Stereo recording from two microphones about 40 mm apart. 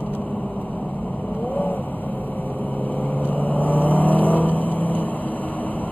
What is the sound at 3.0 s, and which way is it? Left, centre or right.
Vehicle, left.